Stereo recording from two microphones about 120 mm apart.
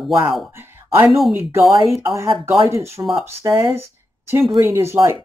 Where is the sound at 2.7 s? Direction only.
25° right (ahead or behind).